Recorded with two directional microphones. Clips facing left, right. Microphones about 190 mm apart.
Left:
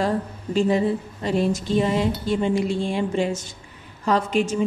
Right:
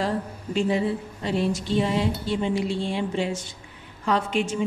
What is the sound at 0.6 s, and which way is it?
A woman's voice, 45° left (ahead or behind).